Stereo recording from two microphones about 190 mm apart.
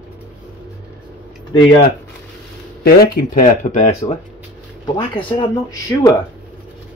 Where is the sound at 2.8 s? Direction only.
50° left (ahead or behind).